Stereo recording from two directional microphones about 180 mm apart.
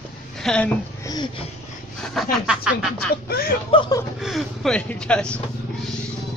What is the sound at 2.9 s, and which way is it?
Speech, 55° left (ahead or behind).